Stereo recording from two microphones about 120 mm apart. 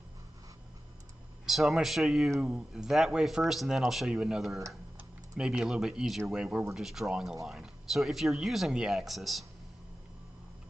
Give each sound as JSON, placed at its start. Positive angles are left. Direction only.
{"t": 1.4, "sound": "speech", "side_deg": 0}